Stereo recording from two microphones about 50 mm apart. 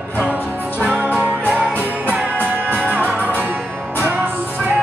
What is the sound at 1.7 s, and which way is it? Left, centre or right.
Music, left.